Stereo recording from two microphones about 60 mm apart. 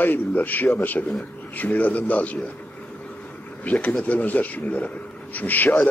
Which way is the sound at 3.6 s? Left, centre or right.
Left.